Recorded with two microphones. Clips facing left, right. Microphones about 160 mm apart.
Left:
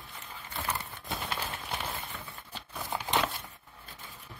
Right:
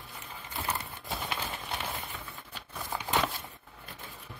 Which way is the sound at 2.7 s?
Centre (ahead or behind).